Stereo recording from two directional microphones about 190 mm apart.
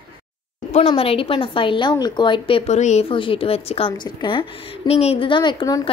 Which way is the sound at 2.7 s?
35° left (ahead or behind).